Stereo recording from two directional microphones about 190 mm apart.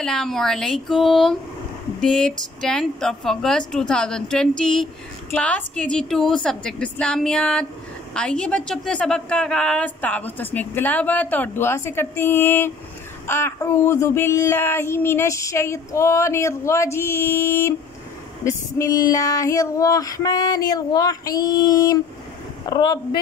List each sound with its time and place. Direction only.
0.0 s a woman's voice: 5° left (ahead or behind)
18.4 s female singing: 15° left (ahead or behind)